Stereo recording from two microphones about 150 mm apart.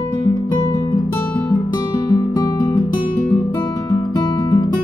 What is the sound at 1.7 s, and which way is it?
Guitar, 25° left (ahead or behind).